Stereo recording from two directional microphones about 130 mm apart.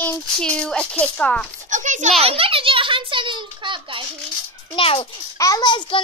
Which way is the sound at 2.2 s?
45° right (ahead or behind).